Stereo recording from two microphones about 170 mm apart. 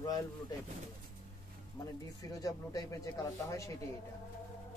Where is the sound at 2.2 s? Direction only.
20° left (ahead or behind).